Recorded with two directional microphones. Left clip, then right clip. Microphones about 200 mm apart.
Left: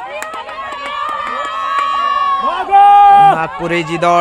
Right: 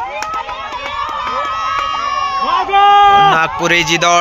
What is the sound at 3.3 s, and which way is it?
Speech, centre (ahead or behind).